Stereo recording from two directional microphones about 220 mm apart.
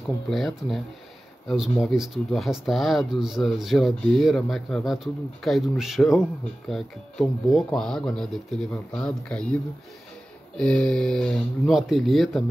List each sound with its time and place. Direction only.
0.0 s speech: centre (ahead or behind)
10.6 s speech: 5° left (ahead or behind)